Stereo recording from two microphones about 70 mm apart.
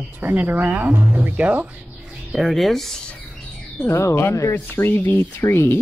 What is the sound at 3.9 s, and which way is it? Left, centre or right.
Speech, left.